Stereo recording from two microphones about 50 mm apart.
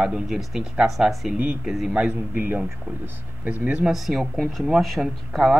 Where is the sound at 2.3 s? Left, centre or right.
Right.